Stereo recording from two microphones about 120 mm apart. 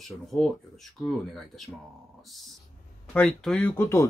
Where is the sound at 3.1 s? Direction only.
10° left (ahead or behind).